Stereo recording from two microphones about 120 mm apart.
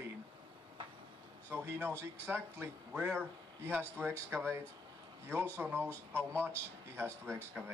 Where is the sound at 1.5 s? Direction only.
20° right (ahead or behind).